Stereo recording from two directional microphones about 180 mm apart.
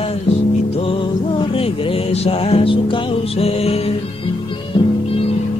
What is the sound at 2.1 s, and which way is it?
Music, 35° left (ahead or behind).